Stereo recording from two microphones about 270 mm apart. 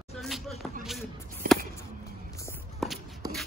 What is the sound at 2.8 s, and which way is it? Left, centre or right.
Shuffle, centre.